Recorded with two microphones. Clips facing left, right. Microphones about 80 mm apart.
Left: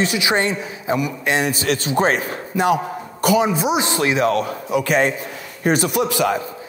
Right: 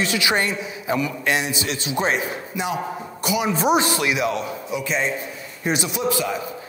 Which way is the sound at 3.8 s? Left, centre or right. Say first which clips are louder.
Left 3 dB; left.